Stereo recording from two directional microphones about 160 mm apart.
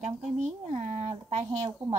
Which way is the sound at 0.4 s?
45° right (ahead or behind).